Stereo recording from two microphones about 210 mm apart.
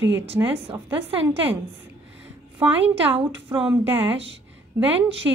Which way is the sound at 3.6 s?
10° right (ahead or behind).